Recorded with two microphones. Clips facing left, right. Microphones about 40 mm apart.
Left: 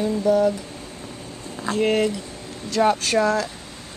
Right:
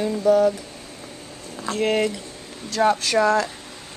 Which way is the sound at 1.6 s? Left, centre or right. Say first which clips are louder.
Left 2 dB; centre.